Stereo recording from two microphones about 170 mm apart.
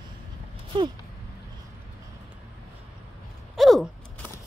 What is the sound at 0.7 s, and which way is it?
Speech, 25° right (ahead or behind).